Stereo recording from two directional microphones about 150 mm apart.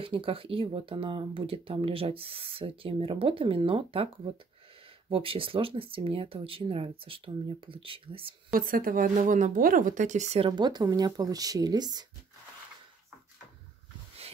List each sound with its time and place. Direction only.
0.0 s speech: 35° right (ahead or behind)
8.5 s speech: 70° right (ahead or behind); by 10.5 s 50° right (ahead or behind)
10.5 s speech: 30° right (ahead or behind)